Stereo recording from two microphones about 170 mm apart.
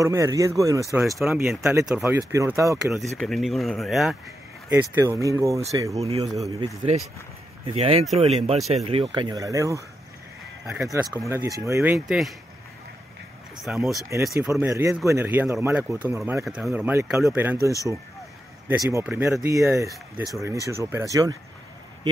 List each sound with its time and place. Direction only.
0.0 s speech: 20° right (ahead or behind)
1.3 s speech: 5° right (ahead or behind)
2.1 s speech: 15° right (ahead or behind)
2.8 s speech: centre (ahead or behind)
4.9 s speech: 15° right (ahead or behind)
5.9 s speech: 35° right (ahead or behind)
7.6 s speech: 35° right (ahead or behind); by 9.8 s 20° right (ahead or behind)
10.6 s speech: centre (ahead or behind)
10.9 s speech: 15° right (ahead or behind)
13.6 s speech: centre (ahead or behind)
14.5 s speech: 15° right (ahead or behind)